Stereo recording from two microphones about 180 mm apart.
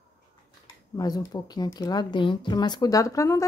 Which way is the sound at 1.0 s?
20° left (ahead or behind).